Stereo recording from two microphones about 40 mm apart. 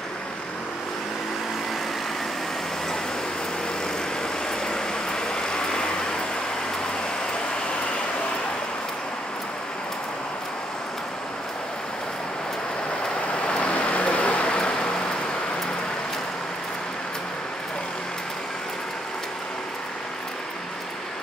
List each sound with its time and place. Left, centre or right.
4.5 s vehicle: centre
13.3 s vehicle: left